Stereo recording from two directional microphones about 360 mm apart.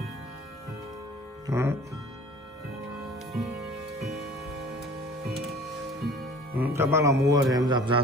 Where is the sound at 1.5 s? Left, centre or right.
Centre.